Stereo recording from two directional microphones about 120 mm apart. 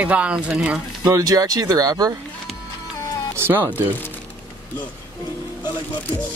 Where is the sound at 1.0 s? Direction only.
30° right (ahead or behind).